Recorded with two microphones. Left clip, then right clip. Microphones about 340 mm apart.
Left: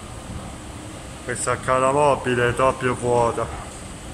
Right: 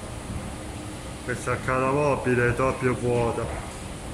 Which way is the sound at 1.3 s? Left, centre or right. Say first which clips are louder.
Left 5 dB; centre.